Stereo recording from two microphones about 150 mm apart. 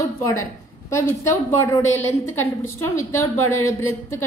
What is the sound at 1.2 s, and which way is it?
A woman's voice, 15° left (ahead or behind).